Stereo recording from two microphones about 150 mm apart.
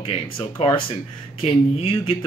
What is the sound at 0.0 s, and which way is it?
Speech, 35° left (ahead or behind).